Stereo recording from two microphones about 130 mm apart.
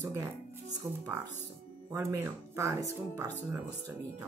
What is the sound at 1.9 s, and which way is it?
Speech, 20° right (ahead or behind).